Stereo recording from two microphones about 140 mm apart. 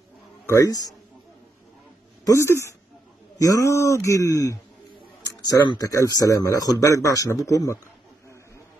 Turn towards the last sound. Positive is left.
turn(degrees=25)  # may be behind; listen again after turning